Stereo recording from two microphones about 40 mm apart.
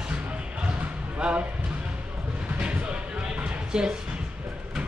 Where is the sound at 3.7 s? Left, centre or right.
Centre.